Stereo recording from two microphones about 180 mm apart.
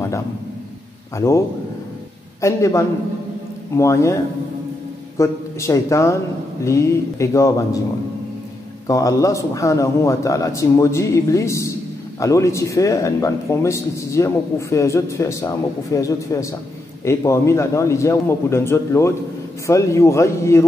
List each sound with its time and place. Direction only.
1.1 s speech: 15° left (ahead or behind)
2.4 s speech: 15° left (ahead or behind)
8.8 s a man's voice: 20° left (ahead or behind)